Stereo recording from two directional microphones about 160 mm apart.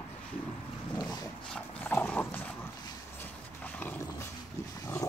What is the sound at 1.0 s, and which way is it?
Dog, 25° left (ahead or behind).